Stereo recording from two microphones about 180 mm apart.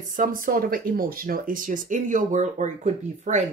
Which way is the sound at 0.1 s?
50° right (ahead or behind).